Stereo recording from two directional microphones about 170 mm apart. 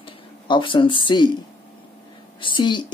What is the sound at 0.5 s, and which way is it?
Speech, 30° left (ahead or behind).